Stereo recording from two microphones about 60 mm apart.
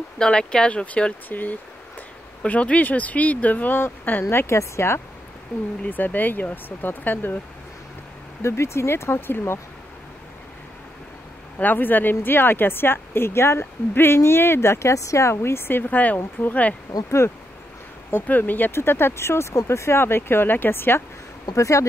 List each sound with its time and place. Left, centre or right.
0.2 s speech: centre
1.3 s speech: left
4.2 s speech: left
5.9 s speech: left
8.4 s speech: left
11.5 s speech: left
16.9 s speech: left
18.1 s speech: left
18.7 s speech: left
21.5 s speech: left